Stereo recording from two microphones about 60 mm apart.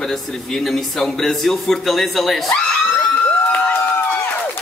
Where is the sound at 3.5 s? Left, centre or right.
Left.